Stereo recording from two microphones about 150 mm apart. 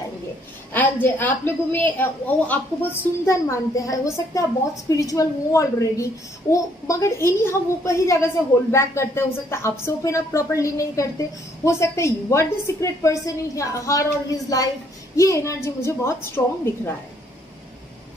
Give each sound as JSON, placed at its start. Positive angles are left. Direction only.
{"t": 1.0, "sound": "a woman's voice", "side_deg": 15}